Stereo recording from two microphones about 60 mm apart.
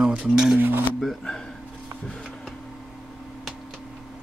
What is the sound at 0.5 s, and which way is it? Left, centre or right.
Dishes, right.